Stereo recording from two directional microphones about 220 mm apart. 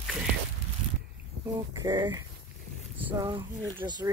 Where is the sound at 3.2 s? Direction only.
20° right (ahead or behind).